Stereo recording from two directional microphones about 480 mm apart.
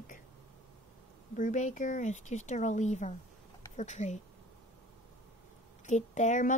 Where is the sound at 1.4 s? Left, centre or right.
Centre.